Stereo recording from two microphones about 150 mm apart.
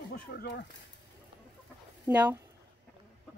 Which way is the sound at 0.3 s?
90° left.